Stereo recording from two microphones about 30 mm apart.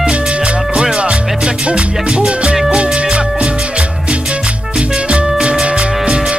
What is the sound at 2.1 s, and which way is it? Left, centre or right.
Music, right.